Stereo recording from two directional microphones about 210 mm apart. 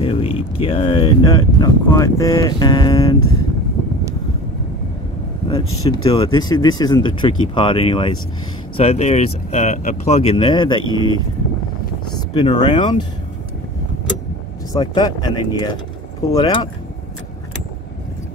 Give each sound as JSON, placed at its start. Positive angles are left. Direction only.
{"t": 0.0, "sound": "speech", "side_deg": 25}
{"t": 6.0, "sound": "speech", "side_deg": 25}
{"t": 12.4, "sound": "speech", "side_deg": 20}
{"t": 14.7, "sound": "speech", "side_deg": 20}